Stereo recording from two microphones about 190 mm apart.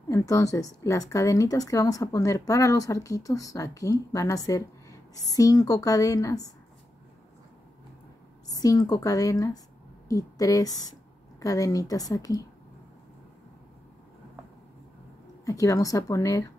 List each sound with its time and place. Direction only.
0.1 s a woman's voice: 15° left (ahead or behind)
8.5 s speech: 20° left (ahead or behind)
15.4 s a woman's voice: 15° left (ahead or behind)